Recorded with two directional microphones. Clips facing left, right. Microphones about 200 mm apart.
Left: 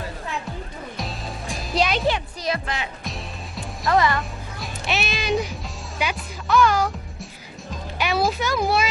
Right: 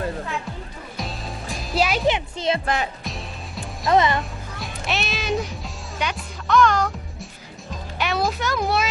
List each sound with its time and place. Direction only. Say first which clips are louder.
0.9 s music: right 2 dB; centre (ahead or behind)
2.0 s music: right 2 dB; 20° right (ahead or behind)
2.6 s speech: right 5 dB; 45° right (ahead or behind)
3.0 s music: even; centre (ahead or behind)
3.9 s speech: right 2 dB; 20° right (ahead or behind)
4.2 s music: even; centre (ahead or behind)
8.0 s a sound: left 1 dB; centre (ahead or behind)